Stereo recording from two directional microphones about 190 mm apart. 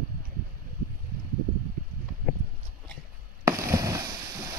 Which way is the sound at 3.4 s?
15° right (ahead or behind).